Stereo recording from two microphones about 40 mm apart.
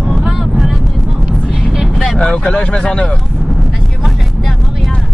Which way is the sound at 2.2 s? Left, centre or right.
Centre.